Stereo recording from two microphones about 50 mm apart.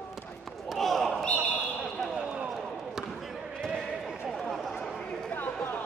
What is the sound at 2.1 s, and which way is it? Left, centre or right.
Basketball bounce, right.